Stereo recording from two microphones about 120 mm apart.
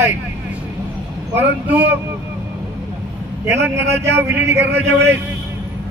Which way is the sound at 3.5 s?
20° right (ahead or behind).